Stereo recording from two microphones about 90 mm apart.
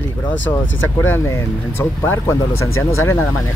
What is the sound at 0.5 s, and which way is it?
Speech, 30° left (ahead or behind).